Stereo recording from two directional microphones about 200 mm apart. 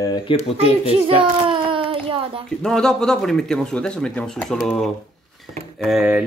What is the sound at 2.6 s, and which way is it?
Speech, centre (ahead or behind).